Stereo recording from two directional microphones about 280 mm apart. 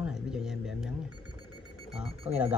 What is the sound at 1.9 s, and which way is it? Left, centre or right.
Speech, right.